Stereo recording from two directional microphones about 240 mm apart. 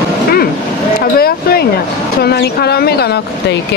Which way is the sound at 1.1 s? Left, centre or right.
Left.